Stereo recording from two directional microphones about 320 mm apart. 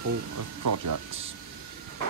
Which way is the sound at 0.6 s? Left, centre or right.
Right.